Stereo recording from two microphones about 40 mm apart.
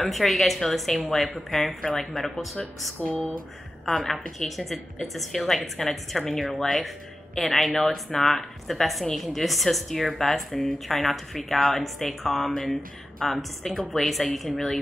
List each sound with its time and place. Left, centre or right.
0.0 s speech: centre
4.0 s speech: centre